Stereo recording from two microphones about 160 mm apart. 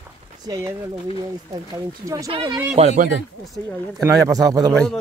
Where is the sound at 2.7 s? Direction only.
45° right (ahead or behind).